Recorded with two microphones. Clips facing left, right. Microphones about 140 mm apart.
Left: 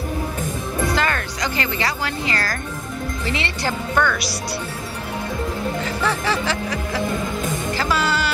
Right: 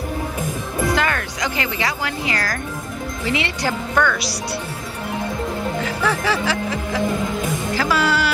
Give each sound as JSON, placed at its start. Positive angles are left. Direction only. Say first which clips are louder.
{"t": 0.9, "sound": "speech", "louder": "right 1 dB", "side_deg": -15}
{"t": 3.9, "sound": "speech", "louder": "right 1 dB", "side_deg": 5}
{"t": 6.0, "sound": "speech", "louder": "right 2 dB", "side_deg": -5}
{"t": 7.7, "sound": "music", "louder": "right 3 dB", "side_deg": -10}